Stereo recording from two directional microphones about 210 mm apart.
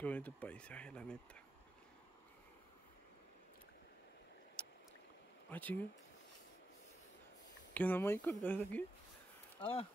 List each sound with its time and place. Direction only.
0.0 s speech: 5° left (ahead or behind)
4.6 s boat: 5° left (ahead or behind)
5.5 s speech: 10° left (ahead or behind)
7.7 s speech: 10° left (ahead or behind)
9.6 s speech: 25° left (ahead or behind)